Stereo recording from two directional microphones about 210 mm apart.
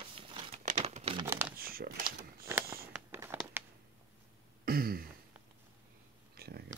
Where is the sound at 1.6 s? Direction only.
45° right (ahead or behind).